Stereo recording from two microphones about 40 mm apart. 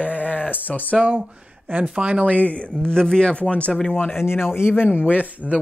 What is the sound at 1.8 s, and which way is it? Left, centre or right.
Speech, right.